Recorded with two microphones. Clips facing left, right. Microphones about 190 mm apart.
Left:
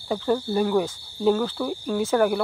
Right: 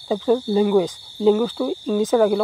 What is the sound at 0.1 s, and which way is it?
Cricket, 15° right (ahead or behind).